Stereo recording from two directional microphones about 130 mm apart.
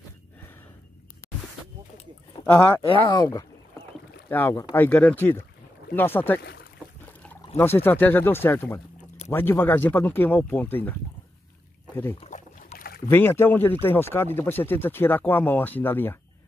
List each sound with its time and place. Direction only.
2.4 s speech: 15° left (ahead or behind)
2.9 s speech: 35° left (ahead or behind)
4.3 s speech: 15° left (ahead or behind)
7.5 s speech: 20° left (ahead or behind)
12.3 s boat: 80° left
13.1 s speech: 15° left (ahead or behind)